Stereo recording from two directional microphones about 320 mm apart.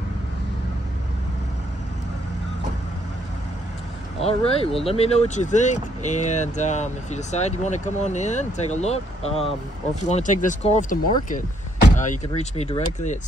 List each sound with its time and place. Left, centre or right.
4.2 s speech: centre